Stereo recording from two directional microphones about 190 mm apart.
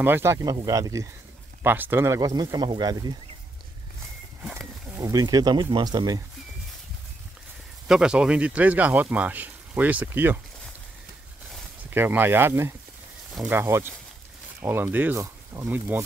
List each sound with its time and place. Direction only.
0.0 s speech: 10° right (ahead or behind)
4.9 s speech: 15° right (ahead or behind)
7.9 s speech: 5° right (ahead or behind)
11.9 s speech: 10° right (ahead or behind)